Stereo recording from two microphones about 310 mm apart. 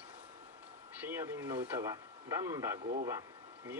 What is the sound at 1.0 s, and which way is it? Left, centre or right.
Speech, centre.